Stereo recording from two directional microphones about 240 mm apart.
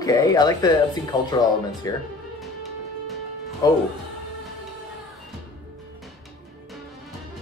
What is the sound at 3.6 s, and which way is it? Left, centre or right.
Speech, centre.